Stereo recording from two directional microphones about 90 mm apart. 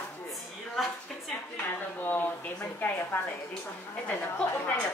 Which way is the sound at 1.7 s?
20° left (ahead or behind).